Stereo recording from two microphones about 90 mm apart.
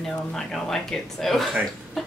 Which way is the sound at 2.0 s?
5° left (ahead or behind).